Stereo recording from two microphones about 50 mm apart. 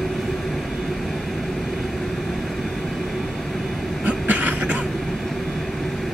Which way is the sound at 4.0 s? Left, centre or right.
Right.